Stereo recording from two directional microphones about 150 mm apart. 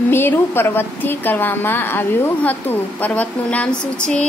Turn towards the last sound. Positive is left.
turn(degrees=5)  # may be behind; listen again after turning